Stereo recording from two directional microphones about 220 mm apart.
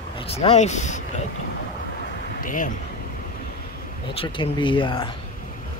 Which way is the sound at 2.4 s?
35° left (ahead or behind).